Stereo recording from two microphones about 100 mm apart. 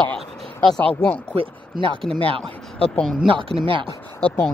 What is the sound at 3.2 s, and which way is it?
Speech, 60° right (ahead or behind).